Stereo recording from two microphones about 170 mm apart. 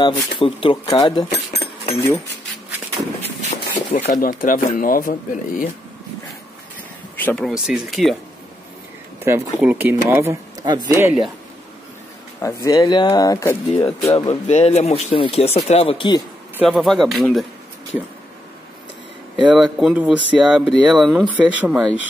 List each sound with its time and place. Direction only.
0.0 s speech: 30° left (ahead or behind)
1.3 s speech: 40° left (ahead or behind)
3.2 s speech: 40° left (ahead or behind)
7.2 s a sound: 10° left (ahead or behind)
7.4 s speech: 5° right (ahead or behind)
9.2 s speech: 10° right (ahead or behind)
12.6 s speech: 20° left (ahead or behind)
13.7 s speech: 35° left (ahead or behind)
16.6 s speech: centre (ahead or behind)
19.4 s speech: 5° right (ahead or behind)